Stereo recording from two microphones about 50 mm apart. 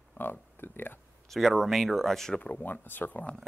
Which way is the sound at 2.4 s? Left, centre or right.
Left.